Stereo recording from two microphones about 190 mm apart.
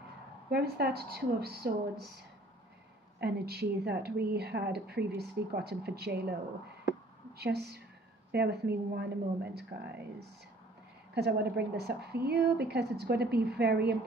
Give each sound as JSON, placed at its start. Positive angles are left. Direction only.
{"t": 0.5, "sound": "speech", "side_deg": -55}
{"t": 3.2, "sound": "speech", "side_deg": -55}
{"t": 7.3, "sound": "speech", "side_deg": -55}
{"t": 11.1, "sound": "speech", "side_deg": -60}